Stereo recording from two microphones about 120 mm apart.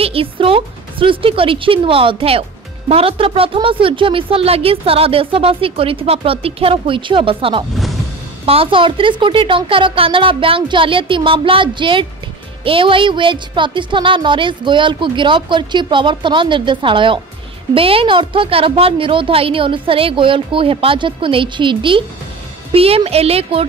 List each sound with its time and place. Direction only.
0.0 s a woman's voice: 50° right (ahead or behind)